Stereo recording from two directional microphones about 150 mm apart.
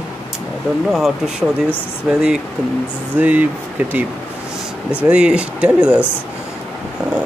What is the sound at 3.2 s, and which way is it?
Speech, 10° right (ahead or behind).